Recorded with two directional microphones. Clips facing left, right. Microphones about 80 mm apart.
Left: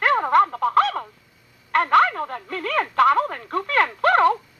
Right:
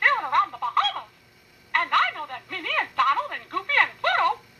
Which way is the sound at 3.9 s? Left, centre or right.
Left.